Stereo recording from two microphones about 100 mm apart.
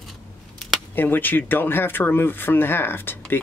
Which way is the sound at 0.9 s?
20° left (ahead or behind).